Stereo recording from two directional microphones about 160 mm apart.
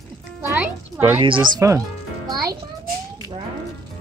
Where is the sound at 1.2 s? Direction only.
30° right (ahead or behind).